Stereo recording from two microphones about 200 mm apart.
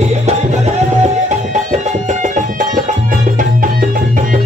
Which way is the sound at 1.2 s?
35° right (ahead or behind).